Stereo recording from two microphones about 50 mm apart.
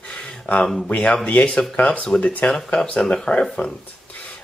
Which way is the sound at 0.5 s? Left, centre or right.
Left.